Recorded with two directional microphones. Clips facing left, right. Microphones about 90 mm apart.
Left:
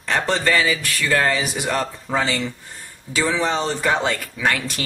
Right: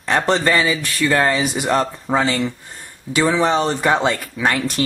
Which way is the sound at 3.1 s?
15° right (ahead or behind).